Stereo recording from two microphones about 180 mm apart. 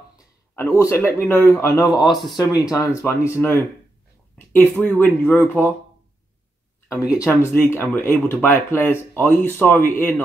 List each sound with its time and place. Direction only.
0.6 s speech: 15° left (ahead or behind)
1.9 s speech: centre (ahead or behind)
2.3 s speech: 20° left (ahead or behind)
7.2 s speech: 15° left (ahead or behind)